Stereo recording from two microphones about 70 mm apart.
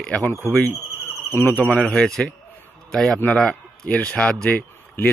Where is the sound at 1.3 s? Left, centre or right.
Left.